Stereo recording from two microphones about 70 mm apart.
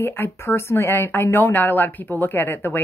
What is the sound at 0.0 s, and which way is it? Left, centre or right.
A woman's voice, left.